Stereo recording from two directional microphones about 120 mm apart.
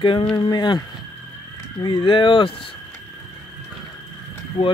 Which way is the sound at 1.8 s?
40° left (ahead or behind).